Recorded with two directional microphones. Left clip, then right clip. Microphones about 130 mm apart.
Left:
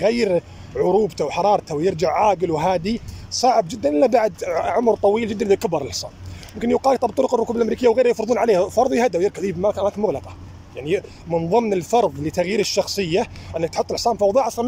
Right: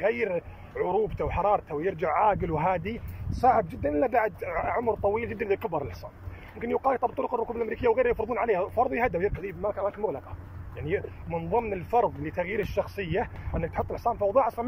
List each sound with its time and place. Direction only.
0.0 s speech: 35° left (ahead or behind)
3.3 s a man's voice: 10° left (ahead or behind); by 7.7 s 40° left (ahead or behind)
7.7 s a man's voice: 25° left (ahead or behind)